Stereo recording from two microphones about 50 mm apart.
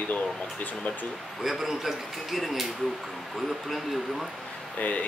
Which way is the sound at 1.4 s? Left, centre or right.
Centre.